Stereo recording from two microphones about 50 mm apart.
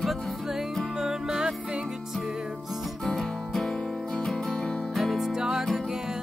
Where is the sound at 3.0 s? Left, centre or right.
Centre.